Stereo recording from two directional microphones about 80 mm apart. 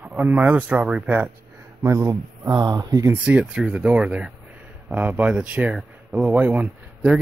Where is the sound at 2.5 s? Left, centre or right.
Right.